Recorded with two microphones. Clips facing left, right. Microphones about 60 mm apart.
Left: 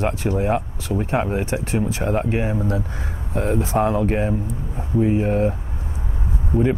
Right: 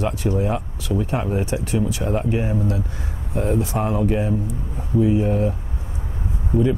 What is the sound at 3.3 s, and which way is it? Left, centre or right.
Speech, left.